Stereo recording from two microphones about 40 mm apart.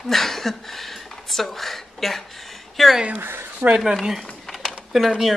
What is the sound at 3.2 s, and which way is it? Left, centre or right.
Speech, right.